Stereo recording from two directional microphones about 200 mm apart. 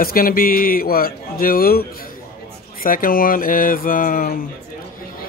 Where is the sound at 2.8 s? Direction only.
45° left (ahead or behind).